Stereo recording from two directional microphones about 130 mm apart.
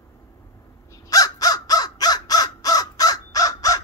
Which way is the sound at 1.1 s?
30° left (ahead or behind).